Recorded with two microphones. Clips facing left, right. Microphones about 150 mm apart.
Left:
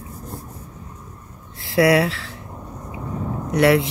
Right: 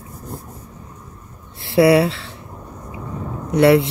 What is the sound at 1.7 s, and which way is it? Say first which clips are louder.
Speech: right 3 dB; 25° right (ahead or behind).